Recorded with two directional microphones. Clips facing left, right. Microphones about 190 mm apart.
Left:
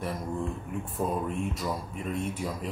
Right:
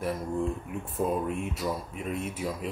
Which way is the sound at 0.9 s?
5° right (ahead or behind).